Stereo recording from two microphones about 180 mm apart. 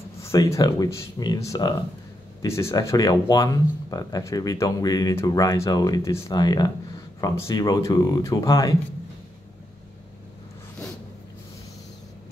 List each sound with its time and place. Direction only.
0.2 s speech: 15° left (ahead or behind)